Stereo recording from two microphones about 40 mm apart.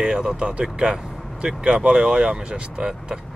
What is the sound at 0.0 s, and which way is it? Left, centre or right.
Speech, right.